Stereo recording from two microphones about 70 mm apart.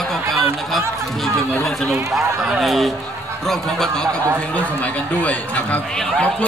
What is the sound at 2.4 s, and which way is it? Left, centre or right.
A man's voice, centre.